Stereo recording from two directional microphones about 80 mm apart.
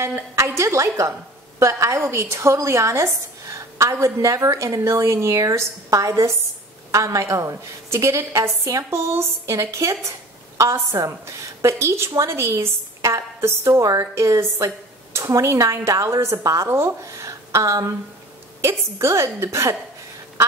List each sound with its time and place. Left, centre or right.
0.0 s a woman's voice: right